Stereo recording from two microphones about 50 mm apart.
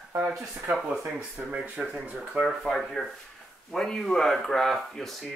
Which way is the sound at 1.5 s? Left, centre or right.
Centre.